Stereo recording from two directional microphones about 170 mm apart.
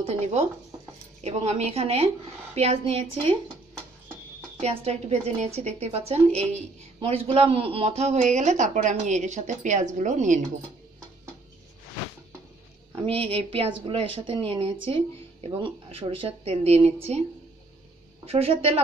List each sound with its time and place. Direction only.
0.0 s speech: 40° right (ahead or behind)
4.6 s speech: 40° right (ahead or behind)
12.9 s speech: 35° right (ahead or behind)
18.2 s speech: 35° right (ahead or behind)